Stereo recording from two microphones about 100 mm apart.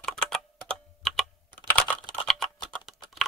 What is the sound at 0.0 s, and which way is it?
Typing, 5° left (ahead or behind).